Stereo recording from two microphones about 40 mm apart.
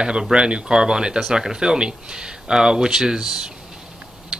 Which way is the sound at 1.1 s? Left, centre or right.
Centre.